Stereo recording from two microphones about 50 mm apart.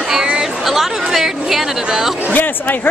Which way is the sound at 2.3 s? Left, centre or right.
Left.